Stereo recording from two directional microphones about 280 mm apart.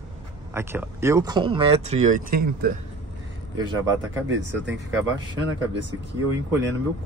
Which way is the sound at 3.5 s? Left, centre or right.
Centre.